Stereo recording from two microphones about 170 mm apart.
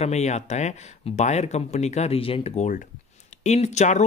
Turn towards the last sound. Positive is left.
turn(degrees=45)  # may be behind; listen again after turning